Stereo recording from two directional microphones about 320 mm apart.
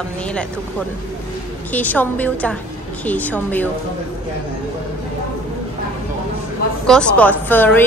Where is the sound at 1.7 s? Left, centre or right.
Centre.